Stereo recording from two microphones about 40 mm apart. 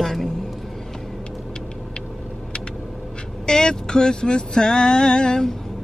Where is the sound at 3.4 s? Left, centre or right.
Centre.